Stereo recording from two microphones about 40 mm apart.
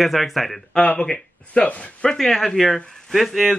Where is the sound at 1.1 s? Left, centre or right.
Left.